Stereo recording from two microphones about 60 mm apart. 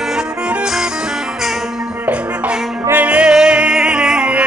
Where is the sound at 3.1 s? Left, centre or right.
Centre.